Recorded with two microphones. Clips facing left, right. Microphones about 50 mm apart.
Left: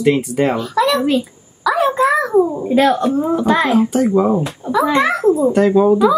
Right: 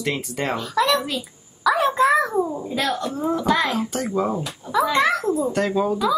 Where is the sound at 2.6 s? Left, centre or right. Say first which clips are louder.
Left 10 dB; left; by 4.4 s centre.